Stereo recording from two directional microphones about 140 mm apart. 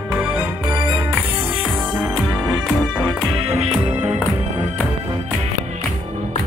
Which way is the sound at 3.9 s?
55° right (ahead or behind).